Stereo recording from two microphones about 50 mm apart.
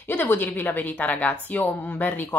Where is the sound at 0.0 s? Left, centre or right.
Left.